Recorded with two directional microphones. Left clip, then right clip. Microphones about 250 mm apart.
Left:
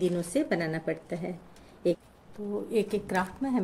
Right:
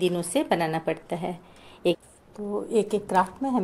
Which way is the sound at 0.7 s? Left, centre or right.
Right.